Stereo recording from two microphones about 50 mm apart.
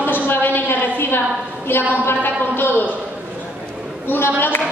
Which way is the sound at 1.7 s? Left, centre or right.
Left.